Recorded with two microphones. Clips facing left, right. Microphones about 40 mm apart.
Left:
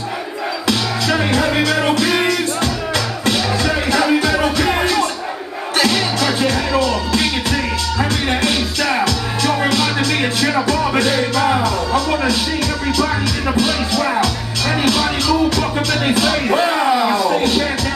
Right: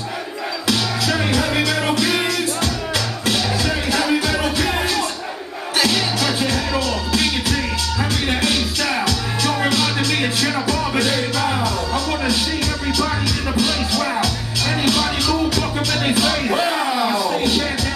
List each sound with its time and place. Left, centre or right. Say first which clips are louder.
0.7 s music: left 2 dB; centre
13.6 s speech: left 2 dB; centre
14.8 s music: left 2 dB; centre